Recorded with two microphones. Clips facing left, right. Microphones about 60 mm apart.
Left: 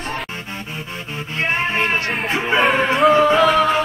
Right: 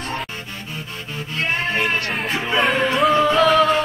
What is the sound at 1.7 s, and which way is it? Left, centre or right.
Music, left.